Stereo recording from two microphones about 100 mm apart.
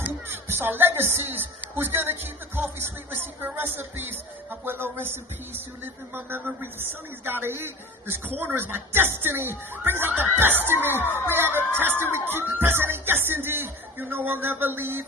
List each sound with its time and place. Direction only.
0.0 s speech: 20° right (ahead or behind)
11.0 s speech: 20° left (ahead or behind)
11.2 s speech: 20° right (ahead or behind)